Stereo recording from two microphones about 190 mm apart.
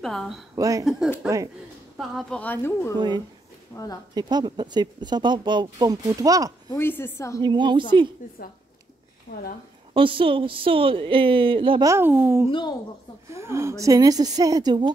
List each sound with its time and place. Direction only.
0.0 s speech: centre (ahead or behind)
0.6 s a child's voice: 15° right (ahead or behind)
0.8 s speech: 5° right (ahead or behind); by 4.0 s 20° left (ahead or behind)
4.1 s speech: 20° right (ahead or behind)
6.7 s speech: 10° left (ahead or behind)
7.4 s speech: 25° right (ahead or behind)
8.2 s a woman's voice: 45° left (ahead or behind)
9.9 s speech: 25° right (ahead or behind)
11.9 s a child's voice: 10° right (ahead or behind)
12.4 s speech: 25° left (ahead or behind)
13.3 s speech: 15° right (ahead or behind)